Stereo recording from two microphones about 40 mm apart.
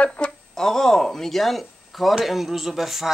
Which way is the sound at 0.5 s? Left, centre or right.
Centre.